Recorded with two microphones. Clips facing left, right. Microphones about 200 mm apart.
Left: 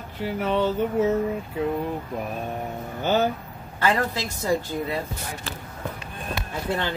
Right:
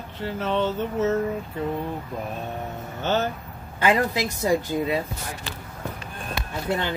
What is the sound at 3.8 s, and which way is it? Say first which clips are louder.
Speech: right 2 dB; 15° right (ahead or behind).